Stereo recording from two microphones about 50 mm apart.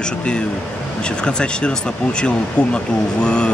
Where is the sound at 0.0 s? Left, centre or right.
Centre.